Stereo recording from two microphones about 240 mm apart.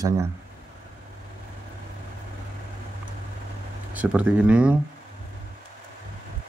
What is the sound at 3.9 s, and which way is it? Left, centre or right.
Speech, centre.